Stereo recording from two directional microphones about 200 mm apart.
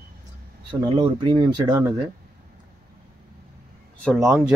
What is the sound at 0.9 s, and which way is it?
Speech, 20° right (ahead or behind).